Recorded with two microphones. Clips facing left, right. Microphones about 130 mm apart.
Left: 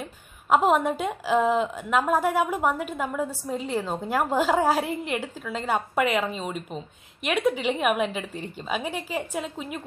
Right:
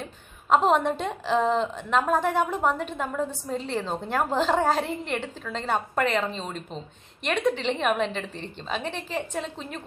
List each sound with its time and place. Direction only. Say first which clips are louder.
0.0 s a woman's voice: left 1 dB; 5° left (ahead or behind)